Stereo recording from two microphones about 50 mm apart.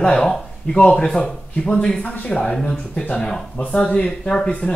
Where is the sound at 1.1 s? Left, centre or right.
Centre.